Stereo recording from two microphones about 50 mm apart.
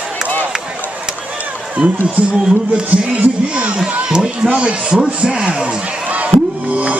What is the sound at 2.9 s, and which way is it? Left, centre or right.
Music, right.